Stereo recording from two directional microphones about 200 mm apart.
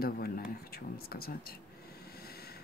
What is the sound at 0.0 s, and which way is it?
Speech, 50° left (ahead or behind).